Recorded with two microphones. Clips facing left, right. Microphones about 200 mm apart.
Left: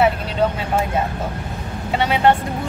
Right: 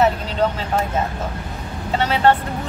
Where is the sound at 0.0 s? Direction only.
10° left (ahead or behind).